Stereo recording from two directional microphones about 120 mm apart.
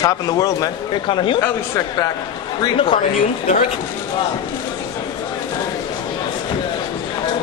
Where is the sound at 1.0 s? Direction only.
45° left (ahead or behind).